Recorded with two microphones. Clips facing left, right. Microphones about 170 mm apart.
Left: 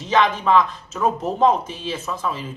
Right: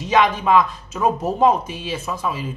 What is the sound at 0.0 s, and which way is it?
Speech, 10° right (ahead or behind).